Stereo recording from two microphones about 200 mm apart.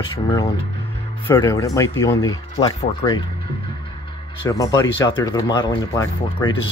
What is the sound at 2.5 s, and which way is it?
Speech, 30° left (ahead or behind).